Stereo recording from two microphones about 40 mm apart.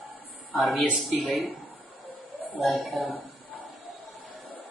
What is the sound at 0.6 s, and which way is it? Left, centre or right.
Speech, centre.